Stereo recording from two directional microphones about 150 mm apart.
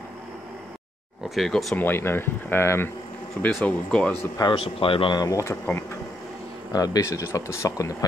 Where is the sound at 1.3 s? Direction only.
Centre (ahead or behind).